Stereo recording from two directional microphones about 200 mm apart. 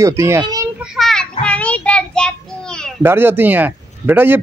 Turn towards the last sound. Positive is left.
turn(degrees=-10)  # may be behind; listen again after turning